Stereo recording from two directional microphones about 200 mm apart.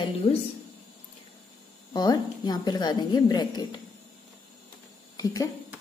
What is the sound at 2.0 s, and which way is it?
A woman's voice, 20° left (ahead or behind).